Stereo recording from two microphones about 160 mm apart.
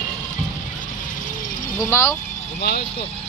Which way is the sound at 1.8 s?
20° left (ahead or behind).